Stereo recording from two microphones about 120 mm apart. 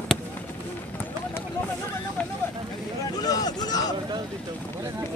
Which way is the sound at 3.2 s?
35° left (ahead or behind).